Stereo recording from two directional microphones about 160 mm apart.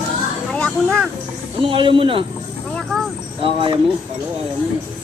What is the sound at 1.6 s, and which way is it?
Speech, 35° right (ahead or behind).